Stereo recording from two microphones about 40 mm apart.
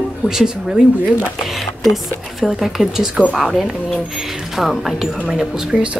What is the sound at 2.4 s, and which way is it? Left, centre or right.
Speech, centre.